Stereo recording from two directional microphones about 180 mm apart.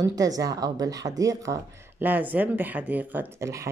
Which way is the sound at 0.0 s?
20° right (ahead or behind).